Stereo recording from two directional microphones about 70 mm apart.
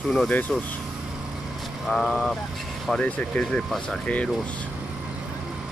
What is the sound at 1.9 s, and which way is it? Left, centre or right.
Speech, centre.